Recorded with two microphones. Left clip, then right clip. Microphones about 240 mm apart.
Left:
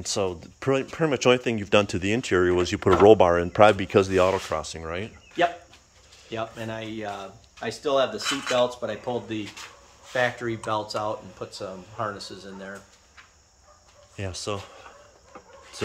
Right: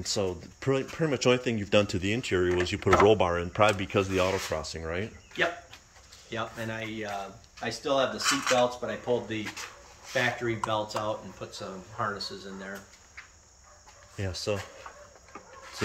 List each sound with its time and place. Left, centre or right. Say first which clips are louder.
0.0 s speech: left 3 dB; centre
4.5 s speech: left 3 dB; centre
6.3 s speech: left 2 dB; left
8.6 s speech: left 1 dB; left
14.1 s speech: even; centre